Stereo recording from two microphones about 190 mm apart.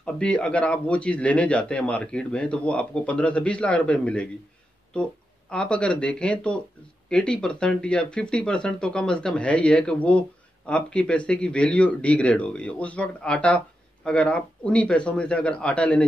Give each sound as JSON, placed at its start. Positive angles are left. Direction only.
{"t": 0.0, "sound": "speech", "side_deg": 5}
{"t": 5.5, "sound": "speech", "side_deg": 5}